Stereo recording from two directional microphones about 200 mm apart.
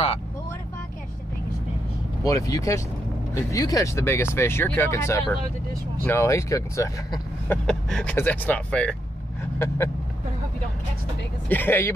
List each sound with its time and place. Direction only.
2.2 s speech: 15° left (ahead or behind)
9.4 s vehicle: 10° left (ahead or behind)
11.4 s speech: 10° left (ahead or behind)